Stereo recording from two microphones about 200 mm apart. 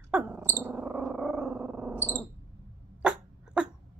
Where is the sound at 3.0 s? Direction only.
5° right (ahead or behind).